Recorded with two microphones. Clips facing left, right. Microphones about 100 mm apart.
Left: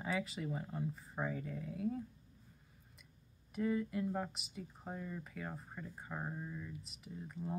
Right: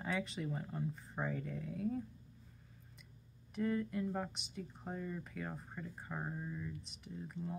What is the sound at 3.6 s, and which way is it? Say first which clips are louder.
Speech: left 1 dB; 5° left (ahead or behind).